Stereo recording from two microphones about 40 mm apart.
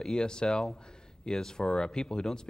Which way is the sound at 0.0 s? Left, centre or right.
Centre.